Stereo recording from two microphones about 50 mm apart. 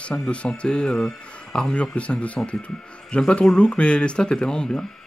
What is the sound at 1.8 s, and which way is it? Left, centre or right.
Speech, left.